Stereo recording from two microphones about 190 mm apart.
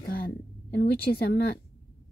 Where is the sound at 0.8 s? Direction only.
50° left (ahead or behind).